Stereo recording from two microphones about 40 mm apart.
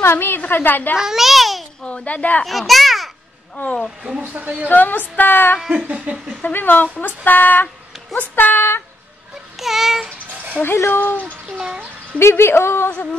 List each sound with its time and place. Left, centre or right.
0.0 s a woman's voice: left
0.5 s speech: left
0.9 s a child's voice: centre
2.0 s speech: left
2.4 s a sound: centre
4.3 s a woman's voice: right
4.6 s speech: left
5.7 s speech: right
6.4 s speech: left
9.6 s a sound: centre
10.6 s speech: left
11.5 s speech: right
12.2 s speech: left